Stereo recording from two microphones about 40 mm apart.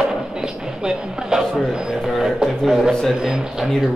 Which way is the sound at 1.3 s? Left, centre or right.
Centre.